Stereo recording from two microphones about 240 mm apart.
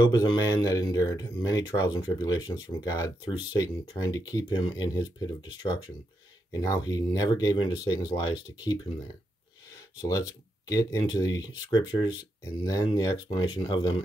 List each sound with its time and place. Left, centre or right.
0.0 s speech: centre
10.0 s speech: centre